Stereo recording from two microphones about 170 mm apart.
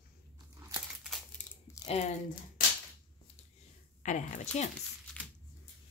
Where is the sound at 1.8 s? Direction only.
20° left (ahead or behind).